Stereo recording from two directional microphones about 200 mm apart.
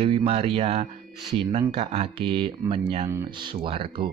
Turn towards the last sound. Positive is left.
turn(degrees=-25)  # may be behind; listen again after turning